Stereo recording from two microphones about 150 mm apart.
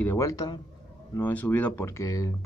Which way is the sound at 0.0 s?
20° left (ahead or behind).